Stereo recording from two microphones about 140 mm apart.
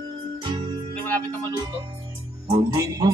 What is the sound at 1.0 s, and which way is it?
Music, 10° left (ahead or behind).